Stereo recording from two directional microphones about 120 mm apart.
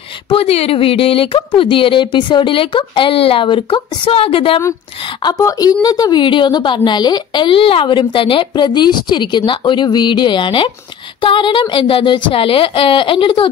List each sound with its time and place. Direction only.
0.3 s speech: 55° left (ahead or behind)
5.2 s a woman's voice: 30° left (ahead or behind); by 13.5 s 45° left (ahead or behind)